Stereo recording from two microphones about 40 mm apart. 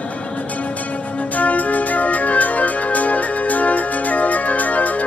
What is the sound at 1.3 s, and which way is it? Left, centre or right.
Music, left.